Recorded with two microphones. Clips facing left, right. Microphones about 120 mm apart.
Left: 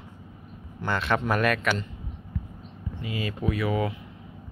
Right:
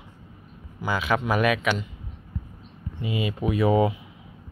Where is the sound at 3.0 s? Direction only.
20° right (ahead or behind).